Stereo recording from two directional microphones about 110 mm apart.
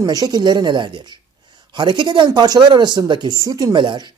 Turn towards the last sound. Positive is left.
turn(degrees=-50)  # may be behind; listen again after turning